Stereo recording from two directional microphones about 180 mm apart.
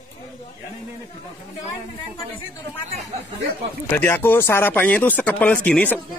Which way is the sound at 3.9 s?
10° left (ahead or behind).